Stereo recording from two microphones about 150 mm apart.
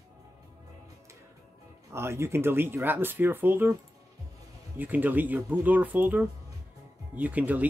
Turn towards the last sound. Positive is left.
turn(degrees=-10)  # may be behind; listen again after turning